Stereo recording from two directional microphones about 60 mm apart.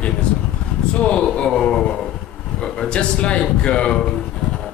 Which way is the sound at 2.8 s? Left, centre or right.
Centre.